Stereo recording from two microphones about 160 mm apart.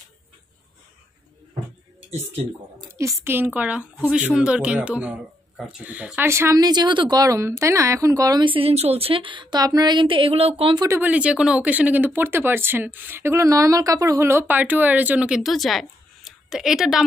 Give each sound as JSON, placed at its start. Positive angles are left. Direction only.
{"t": 2.9, "sound": "a sound", "side_deg": -15}
{"t": 3.3, "sound": "speech", "side_deg": -10}
{"t": 11.0, "sound": "speech", "side_deg": -10}